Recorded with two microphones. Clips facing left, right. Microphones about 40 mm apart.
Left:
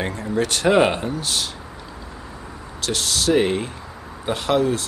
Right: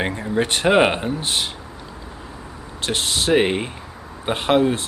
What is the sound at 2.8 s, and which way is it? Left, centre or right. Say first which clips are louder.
Speech: right 1 dB; right.